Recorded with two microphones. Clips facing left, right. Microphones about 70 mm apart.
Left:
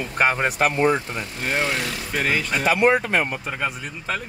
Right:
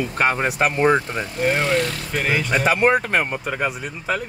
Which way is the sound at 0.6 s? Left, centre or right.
Right.